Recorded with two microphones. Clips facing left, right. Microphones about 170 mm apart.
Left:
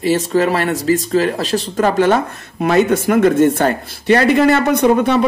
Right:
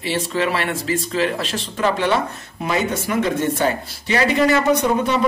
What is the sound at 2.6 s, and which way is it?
Speech, 60° left (ahead or behind).